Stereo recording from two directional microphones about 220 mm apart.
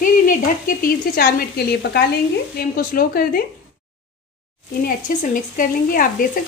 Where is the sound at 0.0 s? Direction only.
40° left (ahead or behind).